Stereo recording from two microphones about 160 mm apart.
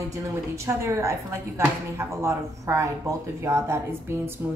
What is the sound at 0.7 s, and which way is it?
Speech, 15° right (ahead or behind).